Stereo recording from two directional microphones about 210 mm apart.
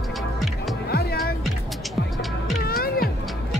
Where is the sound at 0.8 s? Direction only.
50° left (ahead or behind).